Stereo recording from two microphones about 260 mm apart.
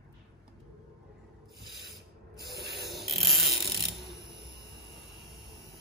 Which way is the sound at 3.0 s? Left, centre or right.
Centre.